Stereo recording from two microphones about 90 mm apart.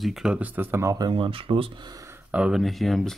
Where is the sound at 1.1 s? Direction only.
85° right.